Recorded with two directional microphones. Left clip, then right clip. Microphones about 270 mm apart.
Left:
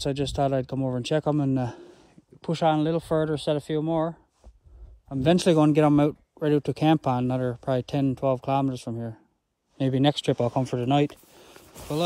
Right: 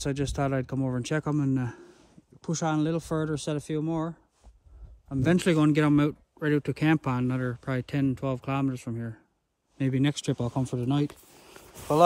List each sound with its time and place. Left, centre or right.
0.0 s speech: centre